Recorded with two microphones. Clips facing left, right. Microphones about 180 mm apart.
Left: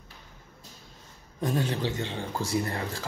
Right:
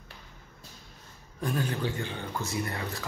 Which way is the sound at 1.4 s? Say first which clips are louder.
Left 2 dB; 25° left (ahead or behind).